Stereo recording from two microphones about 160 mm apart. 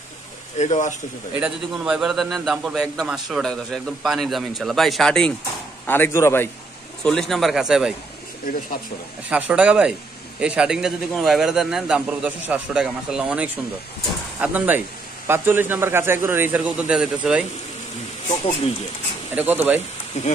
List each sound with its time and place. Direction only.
0.6 s speech: 50° left (ahead or behind)
1.4 s a man's voice: 5° right (ahead or behind); by 6.5 s 15° left (ahead or behind)
7.0 s a man's voice: 5° left (ahead or behind)
9.3 s a man's voice: 10° right (ahead or behind)
18.3 s speech: 40° left (ahead or behind)
19.3 s a man's voice: 10° right (ahead or behind)